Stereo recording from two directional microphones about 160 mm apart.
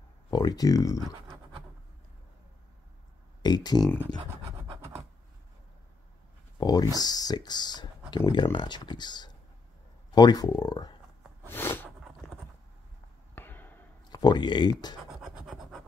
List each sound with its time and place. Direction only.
0.3 s speech: 25° left (ahead or behind)
3.4 s speech: 25° left (ahead or behind)
6.6 s speech: 25° left (ahead or behind)
11.4 s a sound: 15° left (ahead or behind)
13.3 s basketball bounce: 10° left (ahead or behind)
14.1 s speech: 25° left (ahead or behind)
15.0 s scratch: centre (ahead or behind)